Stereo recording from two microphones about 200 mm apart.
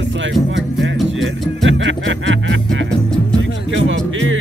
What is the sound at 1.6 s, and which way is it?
Music, 70° right (ahead or behind).